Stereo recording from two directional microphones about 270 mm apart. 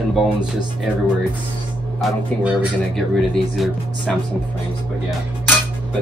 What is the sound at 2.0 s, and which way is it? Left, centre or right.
Speech, centre.